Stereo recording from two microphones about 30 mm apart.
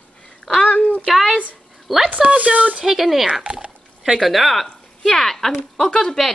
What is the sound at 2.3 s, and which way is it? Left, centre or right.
Speech, right.